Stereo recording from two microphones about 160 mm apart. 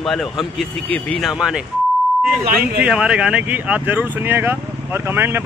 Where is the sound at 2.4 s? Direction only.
70° right (ahead or behind).